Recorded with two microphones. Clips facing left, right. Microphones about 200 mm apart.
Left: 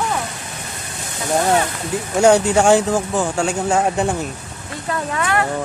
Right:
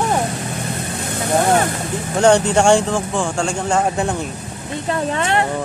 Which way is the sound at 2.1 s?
5° left (ahead or behind).